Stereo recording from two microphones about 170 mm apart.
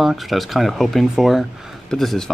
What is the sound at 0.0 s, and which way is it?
Speech, centre (ahead or behind).